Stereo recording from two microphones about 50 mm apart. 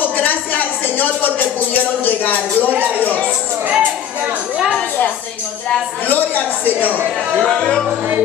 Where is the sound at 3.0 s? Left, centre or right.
Left.